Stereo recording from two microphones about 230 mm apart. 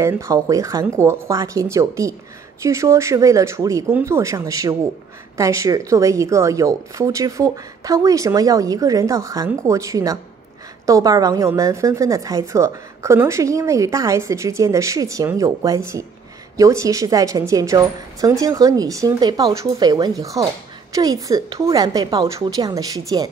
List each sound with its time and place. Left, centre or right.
0.0 s a woman's voice: centre